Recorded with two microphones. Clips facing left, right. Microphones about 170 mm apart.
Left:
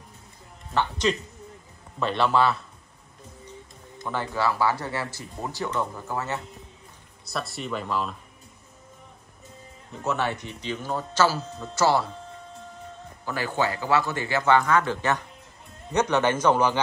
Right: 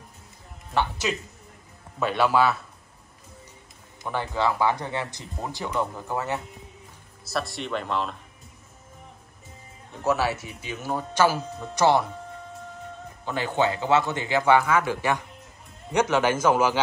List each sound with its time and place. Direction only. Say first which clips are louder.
0.7 s speech: left 1 dB; 10° right (ahead or behind)
4.1 s speech: right 1 dB; 15° right (ahead or behind)
7.2 s speech: right 2 dB; centre (ahead or behind)
10.0 s speech: right 3 dB; 5° right (ahead or behind)
13.2 s a man's voice: right 2 dB; 20° right (ahead or behind)